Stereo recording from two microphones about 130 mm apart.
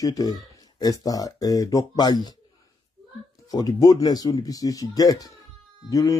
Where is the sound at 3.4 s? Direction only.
30° left (ahead or behind).